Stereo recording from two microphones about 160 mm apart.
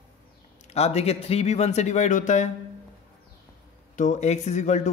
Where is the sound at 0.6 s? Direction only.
40° left (ahead or behind).